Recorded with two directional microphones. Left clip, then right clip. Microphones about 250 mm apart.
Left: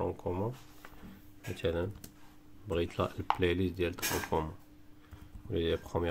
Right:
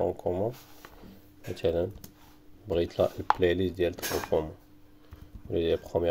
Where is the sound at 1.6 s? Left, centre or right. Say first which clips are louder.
Right 6 dB; centre.